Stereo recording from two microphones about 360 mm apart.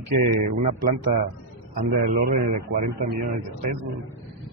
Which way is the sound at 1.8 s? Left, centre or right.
Centre.